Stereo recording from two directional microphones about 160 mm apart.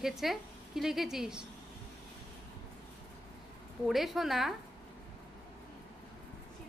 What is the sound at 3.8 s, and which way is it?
Speech, centre (ahead or behind).